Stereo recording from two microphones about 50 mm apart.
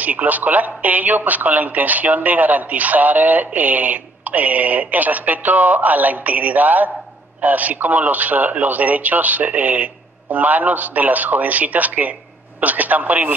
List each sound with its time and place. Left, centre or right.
0.0 s speech: right